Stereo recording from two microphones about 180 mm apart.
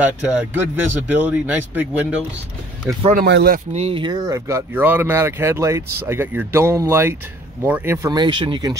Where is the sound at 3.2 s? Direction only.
70° right (ahead or behind).